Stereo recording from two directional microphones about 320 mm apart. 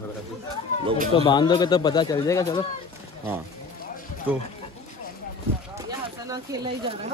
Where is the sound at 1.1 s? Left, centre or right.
Centre.